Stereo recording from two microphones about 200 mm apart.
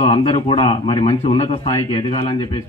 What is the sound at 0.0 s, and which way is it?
A man's voice, 25° left (ahead or behind).